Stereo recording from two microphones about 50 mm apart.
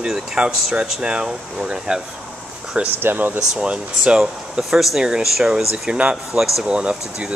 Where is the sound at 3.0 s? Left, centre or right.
Right.